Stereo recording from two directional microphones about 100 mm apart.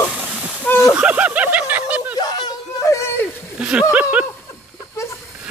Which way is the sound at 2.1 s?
45° left (ahead or behind).